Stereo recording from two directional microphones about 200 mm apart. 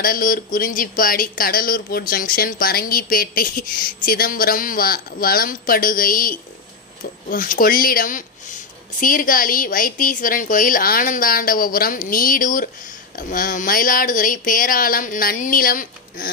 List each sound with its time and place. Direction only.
0.0 s speech: 45° left (ahead or behind)